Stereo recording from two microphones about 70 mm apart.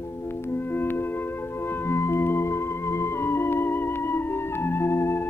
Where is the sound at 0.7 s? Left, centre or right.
Left.